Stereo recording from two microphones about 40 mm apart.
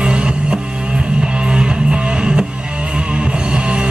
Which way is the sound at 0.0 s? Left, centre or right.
Right.